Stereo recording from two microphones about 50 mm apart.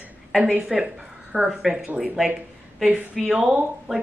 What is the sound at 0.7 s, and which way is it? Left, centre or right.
Speech, centre.